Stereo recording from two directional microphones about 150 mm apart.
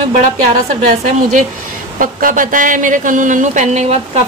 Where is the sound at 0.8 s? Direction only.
60° right (ahead or behind).